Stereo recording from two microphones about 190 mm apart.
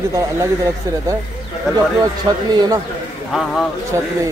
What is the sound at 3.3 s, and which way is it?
Speech, centre (ahead or behind).